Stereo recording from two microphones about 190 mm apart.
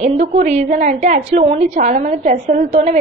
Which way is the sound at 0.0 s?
35° right (ahead or behind).